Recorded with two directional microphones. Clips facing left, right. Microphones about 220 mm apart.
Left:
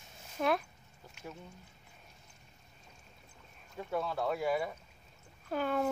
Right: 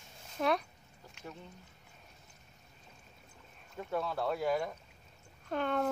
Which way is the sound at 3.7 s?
Centre (ahead or behind).